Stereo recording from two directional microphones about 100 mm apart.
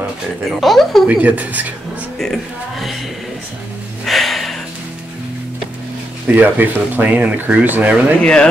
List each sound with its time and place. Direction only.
0.5 s speech: centre (ahead or behind)
1.0 s speech: 15° right (ahead or behind)
2.1 s a sound: centre (ahead or behind)
4.0 s music: centre (ahead or behind)
6.2 s speech: 15° right (ahead or behind)
8.2 s speech: 10° left (ahead or behind)